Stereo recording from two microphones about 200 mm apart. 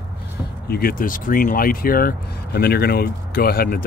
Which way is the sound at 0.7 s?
45° left (ahead or behind).